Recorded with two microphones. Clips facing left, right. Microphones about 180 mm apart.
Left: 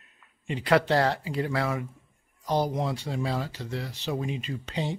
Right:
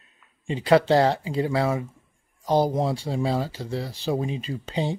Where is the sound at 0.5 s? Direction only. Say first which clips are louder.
Right 5 dB; 25° right (ahead or behind).